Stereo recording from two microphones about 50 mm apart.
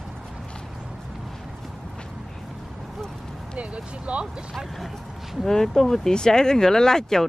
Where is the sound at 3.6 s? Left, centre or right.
Right.